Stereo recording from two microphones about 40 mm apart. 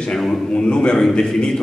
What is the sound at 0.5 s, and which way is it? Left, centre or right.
A man's voice, left.